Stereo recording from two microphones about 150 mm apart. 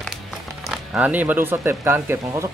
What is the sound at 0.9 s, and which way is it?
Speech, 10° right (ahead or behind).